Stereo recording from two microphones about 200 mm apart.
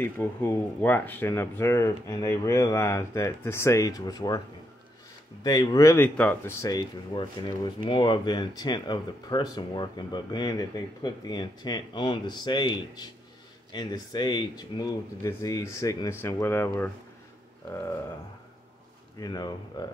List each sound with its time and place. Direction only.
0.0 s speech: 10° left (ahead or behind)
5.4 s speech: 20° left (ahead or behind)
19.1 s speech: 20° left (ahead or behind)